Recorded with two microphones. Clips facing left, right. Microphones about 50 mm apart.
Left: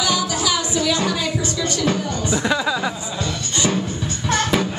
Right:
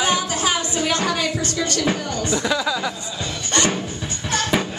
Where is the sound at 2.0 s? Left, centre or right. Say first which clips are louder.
Left 1 dB; left.